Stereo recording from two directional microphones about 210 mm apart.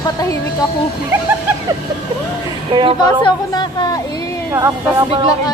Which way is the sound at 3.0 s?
20° left (ahead or behind).